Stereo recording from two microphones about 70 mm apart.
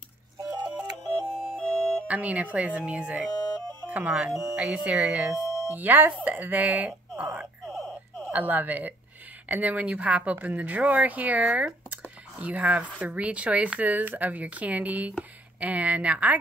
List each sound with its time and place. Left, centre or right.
0.4 s music: right
1.6 s music: centre
2.0 s speech: right
3.3 s music: left
3.9 s speech: right
6.9 s a sound: right
7.6 s a sound: centre
8.3 s speech: right